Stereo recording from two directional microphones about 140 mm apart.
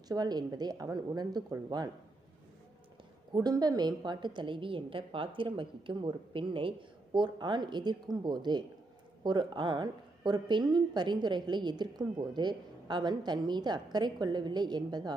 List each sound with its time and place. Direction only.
0.1 s speech: 30° right (ahead or behind)
3.3 s speech: 30° right (ahead or behind)